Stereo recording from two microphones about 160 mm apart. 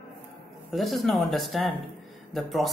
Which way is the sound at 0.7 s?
Centre (ahead or behind).